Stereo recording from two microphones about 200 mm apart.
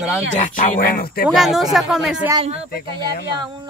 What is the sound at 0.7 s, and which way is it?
Speech, 45° left (ahead or behind).